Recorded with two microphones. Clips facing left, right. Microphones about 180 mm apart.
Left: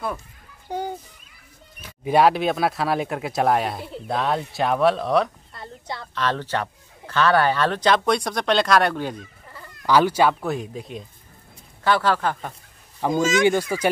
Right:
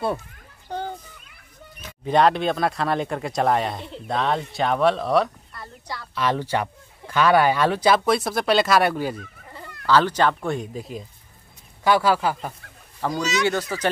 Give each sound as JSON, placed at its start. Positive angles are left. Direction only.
{"t": 0.7, "sound": "children playing", "side_deg": 10}
{"t": 2.0, "sound": "speech", "side_deg": 5}
{"t": 5.5, "sound": "a sound", "side_deg": 25}
{"t": 6.1, "sound": "speech", "side_deg": -10}
{"t": 9.8, "sound": "speech", "side_deg": 10}
{"t": 13.2, "sound": "speech", "side_deg": 50}
{"t": 13.5, "sound": "speech", "side_deg": 10}